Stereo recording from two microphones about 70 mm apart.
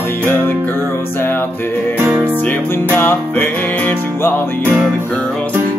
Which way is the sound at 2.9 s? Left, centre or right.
Left.